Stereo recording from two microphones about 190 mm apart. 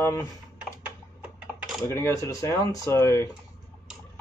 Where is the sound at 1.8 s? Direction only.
15° left (ahead or behind).